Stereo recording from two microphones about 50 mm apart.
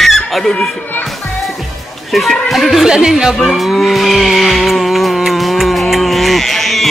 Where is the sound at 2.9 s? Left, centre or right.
Centre.